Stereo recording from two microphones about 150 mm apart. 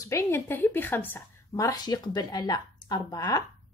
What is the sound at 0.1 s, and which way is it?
A woman's voice, 15° left (ahead or behind).